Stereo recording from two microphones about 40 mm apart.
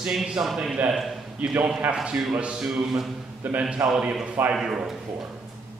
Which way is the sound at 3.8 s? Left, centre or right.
Right.